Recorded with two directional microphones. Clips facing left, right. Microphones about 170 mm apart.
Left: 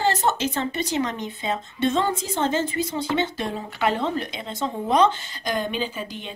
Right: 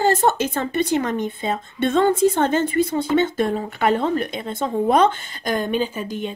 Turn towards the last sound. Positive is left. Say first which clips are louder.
# right 5 dB
turn(degrees=-45)  # may be behind; listen again after turning